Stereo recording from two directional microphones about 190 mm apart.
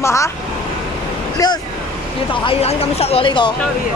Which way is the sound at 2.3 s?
30° left (ahead or behind).